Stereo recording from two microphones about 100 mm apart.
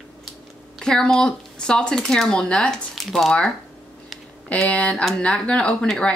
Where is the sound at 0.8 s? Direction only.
5° left (ahead or behind).